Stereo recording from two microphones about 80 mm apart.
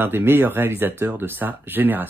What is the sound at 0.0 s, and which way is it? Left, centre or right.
Speech, right.